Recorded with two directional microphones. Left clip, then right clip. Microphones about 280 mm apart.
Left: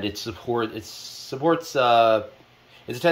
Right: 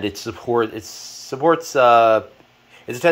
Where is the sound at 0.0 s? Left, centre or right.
Right.